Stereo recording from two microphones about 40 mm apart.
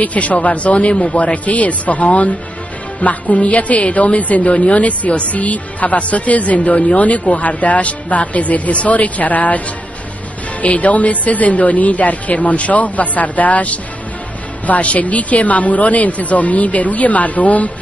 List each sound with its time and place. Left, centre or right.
0.0 s speech: left
10.6 s speech: left